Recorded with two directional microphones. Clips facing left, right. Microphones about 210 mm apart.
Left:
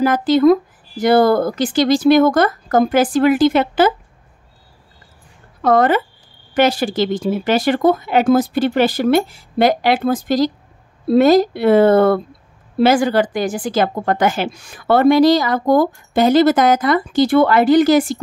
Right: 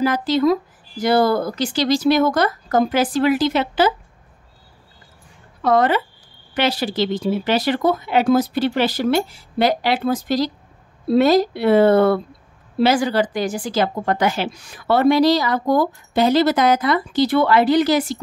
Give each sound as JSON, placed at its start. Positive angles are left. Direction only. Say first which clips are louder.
{"t": 0.0, "sound": "speech", "louder": "left 5 dB", "side_deg": 50}
{"t": 5.6, "sound": "speech", "louder": "left 3 dB", "side_deg": 50}